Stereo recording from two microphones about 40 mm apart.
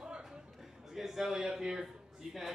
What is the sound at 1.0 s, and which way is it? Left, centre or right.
A man's voice, centre.